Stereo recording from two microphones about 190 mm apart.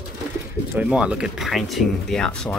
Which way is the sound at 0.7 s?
5° right (ahead or behind).